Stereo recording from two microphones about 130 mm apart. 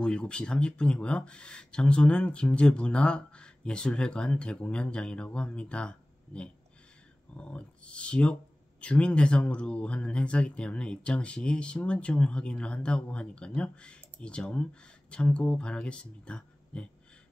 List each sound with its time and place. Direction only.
0.0 s speech: 5° left (ahead or behind)